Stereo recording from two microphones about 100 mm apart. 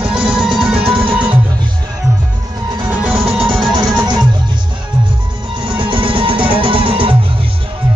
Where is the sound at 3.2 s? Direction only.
75° right (ahead or behind).